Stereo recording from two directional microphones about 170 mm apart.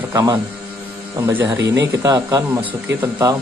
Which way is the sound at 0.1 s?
20° right (ahead or behind).